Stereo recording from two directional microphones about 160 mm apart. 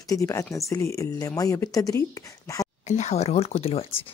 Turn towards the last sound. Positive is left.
turn(degrees=35)  # may be behind; listen again after turning